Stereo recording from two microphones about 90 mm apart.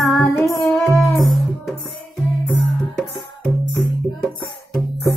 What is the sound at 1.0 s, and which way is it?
Music, centre (ahead or behind).